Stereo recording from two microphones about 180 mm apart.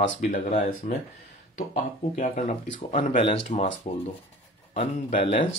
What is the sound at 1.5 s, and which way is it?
Speech, 45° left (ahead or behind).